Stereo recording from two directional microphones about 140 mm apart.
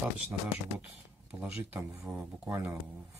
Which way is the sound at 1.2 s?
10° right (ahead or behind).